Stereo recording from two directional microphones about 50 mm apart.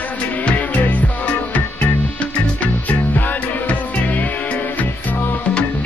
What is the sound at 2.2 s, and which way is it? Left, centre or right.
Music, left.